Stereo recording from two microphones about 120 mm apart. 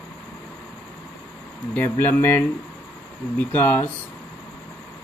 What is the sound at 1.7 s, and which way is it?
Speech, 15° left (ahead or behind).